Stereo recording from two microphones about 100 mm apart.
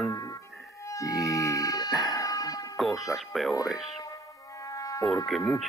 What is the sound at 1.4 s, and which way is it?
Music, 35° left (ahead or behind).